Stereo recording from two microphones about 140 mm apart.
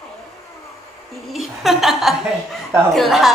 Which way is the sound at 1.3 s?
Centre (ahead or behind).